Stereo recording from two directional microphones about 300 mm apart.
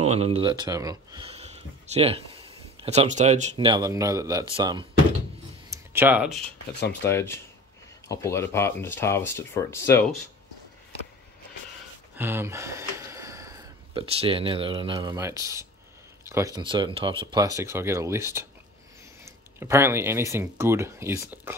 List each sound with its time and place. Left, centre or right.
0.0 s speech: right; by 6.4 s centre
7.0 s speech: centre
12.2 s speech: centre